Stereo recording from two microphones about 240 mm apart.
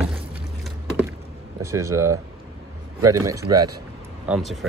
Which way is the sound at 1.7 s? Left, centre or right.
Centre.